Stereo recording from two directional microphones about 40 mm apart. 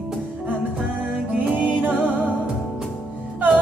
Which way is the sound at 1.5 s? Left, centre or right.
Right.